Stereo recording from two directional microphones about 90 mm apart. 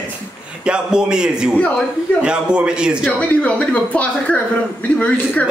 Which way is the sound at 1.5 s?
15° left (ahead or behind).